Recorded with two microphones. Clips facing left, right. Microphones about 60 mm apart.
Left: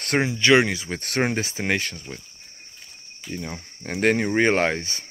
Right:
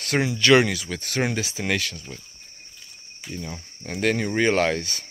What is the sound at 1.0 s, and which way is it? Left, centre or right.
Speech, left.